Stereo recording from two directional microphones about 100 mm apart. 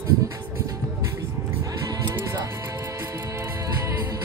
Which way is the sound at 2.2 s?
30° right (ahead or behind).